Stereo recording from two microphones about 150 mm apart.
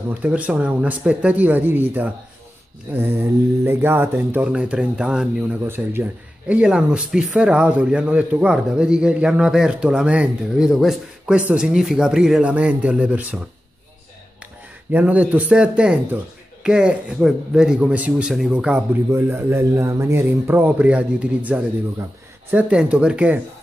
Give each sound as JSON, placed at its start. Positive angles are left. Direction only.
{"t": 0.1, "sound": "speech", "side_deg": -10}
{"t": 14.4, "sound": "speech", "side_deg": -10}
{"t": 19.0, "sound": "speech", "side_deg": -15}